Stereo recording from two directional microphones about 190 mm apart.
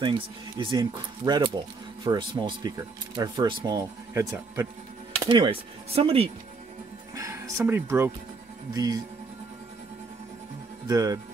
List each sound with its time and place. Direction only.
0.6 s speech: 25° right (ahead or behind)
5.3 s speech: 30° right (ahead or behind)
7.2 s speech: 15° right (ahead or behind)
10.9 s speech: 20° right (ahead or behind)